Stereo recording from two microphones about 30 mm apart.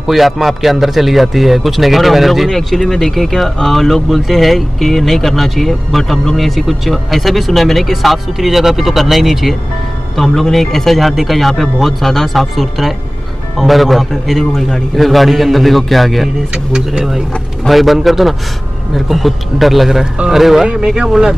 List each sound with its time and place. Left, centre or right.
0.0 s speech: centre
2.7 s speech: centre
10.1 s speech: centre
12.5 s speech: centre
16.5 s speech: right
17.6 s speech: centre
20.6 s speech: right
21.1 s speech: centre